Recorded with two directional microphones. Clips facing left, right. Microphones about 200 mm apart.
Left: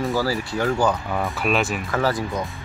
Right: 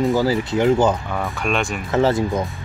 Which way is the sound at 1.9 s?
25° right (ahead or behind).